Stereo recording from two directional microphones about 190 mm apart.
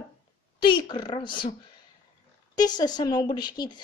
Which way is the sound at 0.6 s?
25° left (ahead or behind).